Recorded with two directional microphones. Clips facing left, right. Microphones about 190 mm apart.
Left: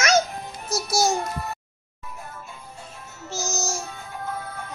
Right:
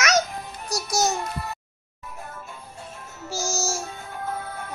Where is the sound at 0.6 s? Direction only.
5° left (ahead or behind).